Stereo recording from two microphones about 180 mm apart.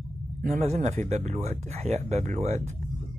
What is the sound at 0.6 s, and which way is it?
Speech, 35° right (ahead or behind).